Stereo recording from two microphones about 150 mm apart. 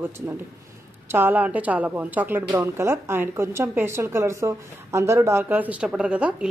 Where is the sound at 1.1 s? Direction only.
10° right (ahead or behind).